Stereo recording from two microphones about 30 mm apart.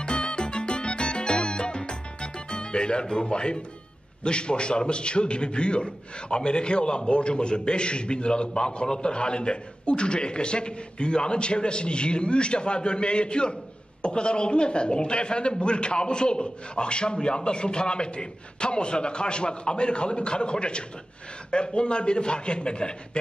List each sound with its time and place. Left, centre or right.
0.0 s music: left
4.2 s a man's voice: left